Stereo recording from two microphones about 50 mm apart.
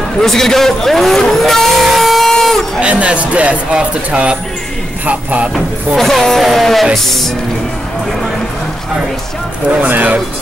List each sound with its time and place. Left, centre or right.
0.2 s speech: centre
2.3 s a sound: centre
2.8 s speech: right
5.9 s speech: centre
9.7 s speech: right